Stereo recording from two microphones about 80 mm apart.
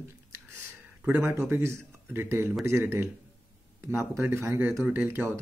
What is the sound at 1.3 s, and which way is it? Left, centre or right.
Speech, right.